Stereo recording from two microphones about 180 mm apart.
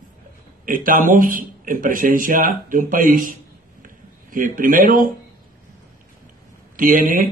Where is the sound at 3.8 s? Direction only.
50° right (ahead or behind).